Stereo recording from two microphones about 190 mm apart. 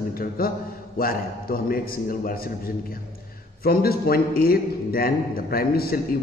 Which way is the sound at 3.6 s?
50° left (ahead or behind).